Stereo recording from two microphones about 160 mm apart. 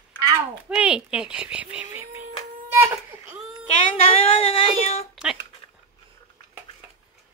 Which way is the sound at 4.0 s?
35° left (ahead or behind).